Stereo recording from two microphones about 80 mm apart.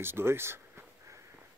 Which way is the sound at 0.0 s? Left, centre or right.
Right.